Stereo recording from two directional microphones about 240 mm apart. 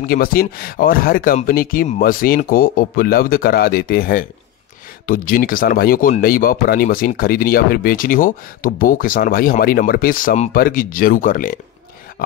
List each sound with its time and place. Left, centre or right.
0.0 s speech: left